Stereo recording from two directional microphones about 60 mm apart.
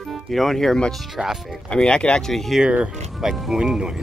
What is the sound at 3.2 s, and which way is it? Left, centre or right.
Speech, centre.